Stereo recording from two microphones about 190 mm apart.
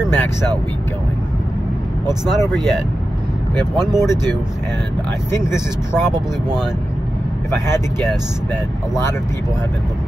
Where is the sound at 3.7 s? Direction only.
20° right (ahead or behind).